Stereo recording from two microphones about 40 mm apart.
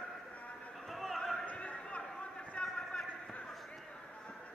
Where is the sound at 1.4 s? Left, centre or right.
Left.